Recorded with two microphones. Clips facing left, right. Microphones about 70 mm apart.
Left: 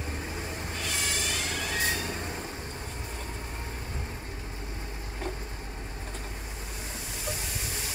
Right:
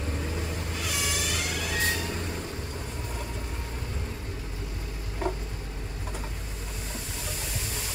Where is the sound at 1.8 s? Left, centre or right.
Centre.